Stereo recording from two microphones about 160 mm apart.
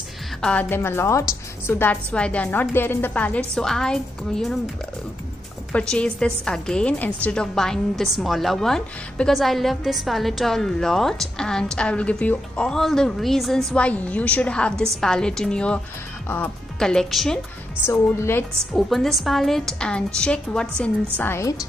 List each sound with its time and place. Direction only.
0.4 s a woman's voice: 10° left (ahead or behind)
5.7 s a woman's voice: 5° left (ahead or behind)
17.8 s a woman's voice: 15° left (ahead or behind)
18.7 s a woman's voice: centre (ahead or behind)
21.2 s a woman's voice: 15° left (ahead or behind)